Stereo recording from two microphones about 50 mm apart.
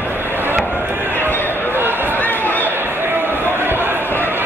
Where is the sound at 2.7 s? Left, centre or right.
Right.